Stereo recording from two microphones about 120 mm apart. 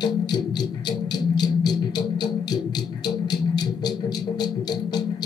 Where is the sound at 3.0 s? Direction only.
35° left (ahead or behind).